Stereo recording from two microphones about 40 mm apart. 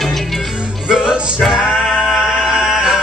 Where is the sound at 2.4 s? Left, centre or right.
Centre.